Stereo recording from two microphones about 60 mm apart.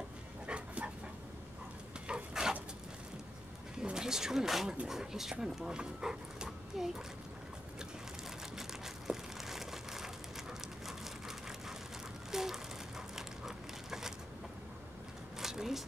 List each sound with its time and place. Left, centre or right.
0.5 s dog: centre
2.0 s dog: centre
3.7 s speech: centre
8.5 s crumpling: centre
10.9 s a sound: centre
15.3 s a sound: centre